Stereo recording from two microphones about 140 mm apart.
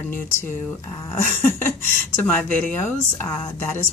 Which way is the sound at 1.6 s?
15° left (ahead or behind).